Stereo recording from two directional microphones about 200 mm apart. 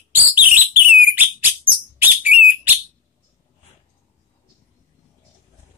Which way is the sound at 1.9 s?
10° right (ahead or behind).